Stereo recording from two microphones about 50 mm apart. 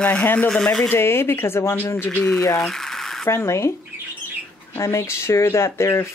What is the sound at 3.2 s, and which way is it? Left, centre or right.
Speech, left.